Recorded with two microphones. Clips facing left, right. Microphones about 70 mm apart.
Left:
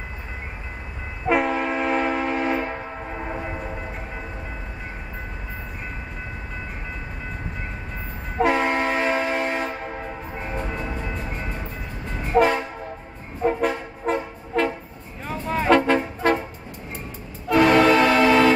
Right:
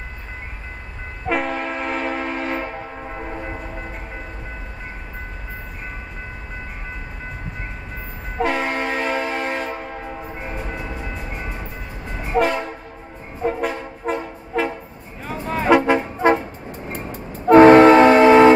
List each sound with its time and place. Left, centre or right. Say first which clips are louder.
1.2 s train: left 2 dB; centre
8.4 s train: left 1 dB; centre
10.7 s train: even; centre
13.4 s music: left 1 dB; centre
17.5 s train: right 8 dB; right